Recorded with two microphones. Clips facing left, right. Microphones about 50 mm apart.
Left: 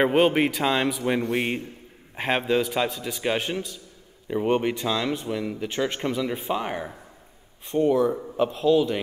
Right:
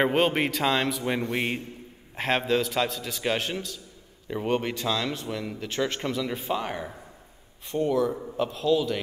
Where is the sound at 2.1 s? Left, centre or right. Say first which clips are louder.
Left 1 dB; centre.